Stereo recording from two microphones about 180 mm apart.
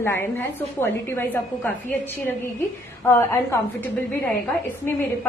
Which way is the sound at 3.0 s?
10° left (ahead or behind).